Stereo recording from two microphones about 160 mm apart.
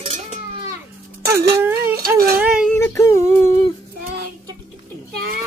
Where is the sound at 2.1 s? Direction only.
70° right (ahead or behind).